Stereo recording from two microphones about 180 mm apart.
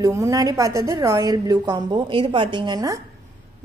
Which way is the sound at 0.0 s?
15° right (ahead or behind).